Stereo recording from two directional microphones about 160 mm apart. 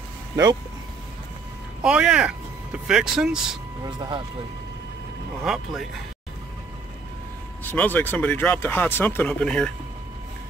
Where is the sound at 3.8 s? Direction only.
30° right (ahead or behind).